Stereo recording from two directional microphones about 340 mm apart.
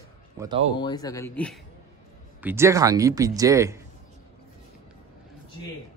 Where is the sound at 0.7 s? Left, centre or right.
Centre.